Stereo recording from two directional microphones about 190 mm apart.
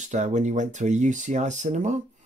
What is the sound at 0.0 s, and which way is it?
Speech, 40° right (ahead or behind).